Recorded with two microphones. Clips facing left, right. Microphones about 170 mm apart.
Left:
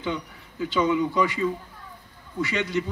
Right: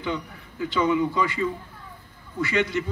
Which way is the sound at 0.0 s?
20° left (ahead or behind).